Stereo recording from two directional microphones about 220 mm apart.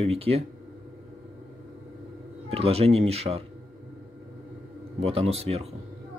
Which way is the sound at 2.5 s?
25° right (ahead or behind).